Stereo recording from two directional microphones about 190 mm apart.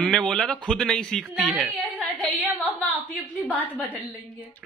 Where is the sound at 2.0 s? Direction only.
10° left (ahead or behind).